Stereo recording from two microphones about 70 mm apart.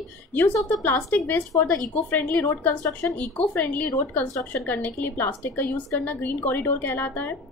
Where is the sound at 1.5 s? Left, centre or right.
Left.